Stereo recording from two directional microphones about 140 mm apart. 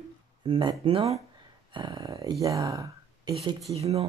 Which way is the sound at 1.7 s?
35° right (ahead or behind).